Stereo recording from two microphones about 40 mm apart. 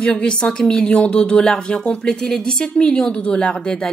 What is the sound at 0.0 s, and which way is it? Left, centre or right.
Speech, left.